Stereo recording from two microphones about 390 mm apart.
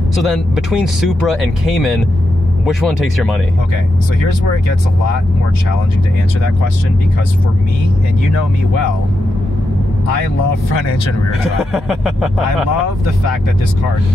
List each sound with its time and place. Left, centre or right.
0.2 s speech: centre
11.7 s speech: centre